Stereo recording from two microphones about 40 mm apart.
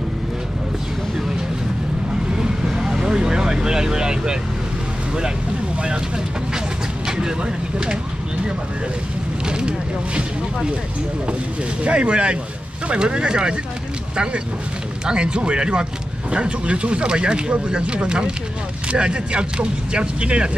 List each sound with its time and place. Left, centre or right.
2.3 s vehicle: right
2.7 s vehicle: centre
7.1 s speech: centre
9.5 s speech: right
11.8 s speech: right